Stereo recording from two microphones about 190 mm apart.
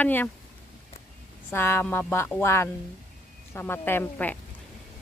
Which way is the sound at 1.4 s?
10° left (ahead or behind).